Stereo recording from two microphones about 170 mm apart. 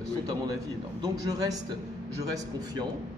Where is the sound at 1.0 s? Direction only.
20° right (ahead or behind).